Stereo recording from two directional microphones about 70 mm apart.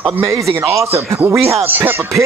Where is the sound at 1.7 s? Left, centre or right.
Right.